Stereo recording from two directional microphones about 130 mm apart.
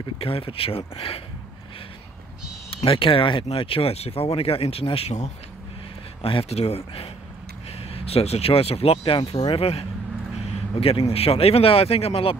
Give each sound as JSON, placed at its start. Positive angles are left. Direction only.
{"t": 0.2, "sound": "speech", "side_deg": 45}
{"t": 2.7, "sound": "speech", "side_deg": 45}